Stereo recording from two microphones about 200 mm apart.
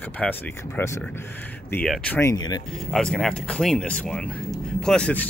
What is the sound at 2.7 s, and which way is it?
Speech, centre (ahead or behind).